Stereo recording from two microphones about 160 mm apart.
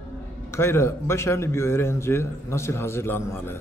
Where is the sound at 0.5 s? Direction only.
15° left (ahead or behind).